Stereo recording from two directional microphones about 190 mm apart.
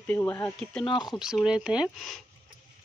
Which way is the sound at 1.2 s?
5° right (ahead or behind).